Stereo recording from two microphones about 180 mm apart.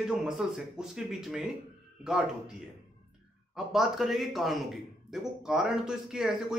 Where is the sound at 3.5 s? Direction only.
Centre (ahead or behind).